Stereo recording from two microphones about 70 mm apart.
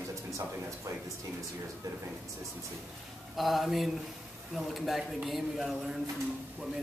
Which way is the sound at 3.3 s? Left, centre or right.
Centre.